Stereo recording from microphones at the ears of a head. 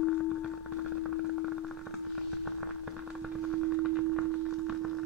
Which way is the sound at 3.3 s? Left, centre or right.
Right.